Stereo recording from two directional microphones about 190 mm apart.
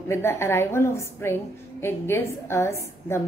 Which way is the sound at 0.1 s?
15° left (ahead or behind).